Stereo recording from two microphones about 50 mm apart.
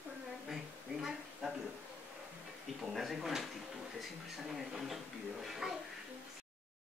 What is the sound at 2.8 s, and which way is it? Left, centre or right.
Speech, centre.